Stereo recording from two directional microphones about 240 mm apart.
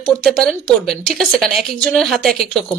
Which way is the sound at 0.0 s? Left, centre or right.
Centre.